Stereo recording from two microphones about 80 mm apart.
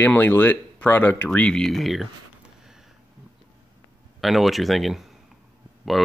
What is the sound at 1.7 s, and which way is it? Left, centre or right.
Speech, centre.